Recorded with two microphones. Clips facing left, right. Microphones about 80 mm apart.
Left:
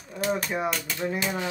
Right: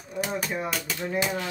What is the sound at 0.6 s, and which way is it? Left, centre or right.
Speech, centre.